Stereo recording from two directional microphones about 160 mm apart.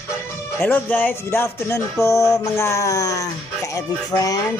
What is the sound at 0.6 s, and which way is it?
Music, 10° left (ahead or behind).